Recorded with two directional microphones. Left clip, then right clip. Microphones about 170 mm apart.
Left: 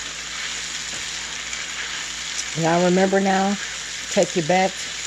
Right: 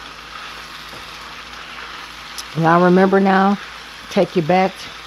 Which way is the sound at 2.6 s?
40° right (ahead or behind).